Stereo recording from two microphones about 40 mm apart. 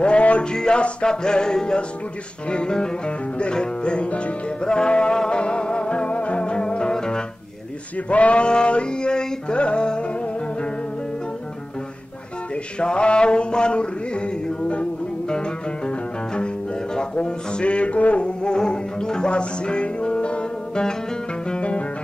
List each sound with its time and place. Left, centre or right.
0.0 s music: left
0.5 s music: left
8.1 s music: left
12.7 s a sound: left
16.9 s music: left